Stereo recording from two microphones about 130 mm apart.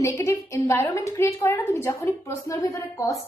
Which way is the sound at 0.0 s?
20° left (ahead or behind).